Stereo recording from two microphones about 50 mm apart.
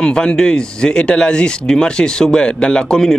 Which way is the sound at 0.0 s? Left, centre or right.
Centre.